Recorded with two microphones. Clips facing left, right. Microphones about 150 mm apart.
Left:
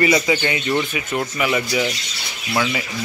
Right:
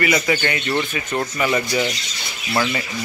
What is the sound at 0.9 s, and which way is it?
Speech, 5° left (ahead or behind).